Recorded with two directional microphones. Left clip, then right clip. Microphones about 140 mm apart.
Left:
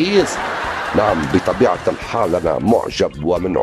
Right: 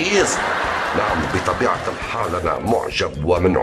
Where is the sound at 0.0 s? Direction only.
30° left (ahead or behind).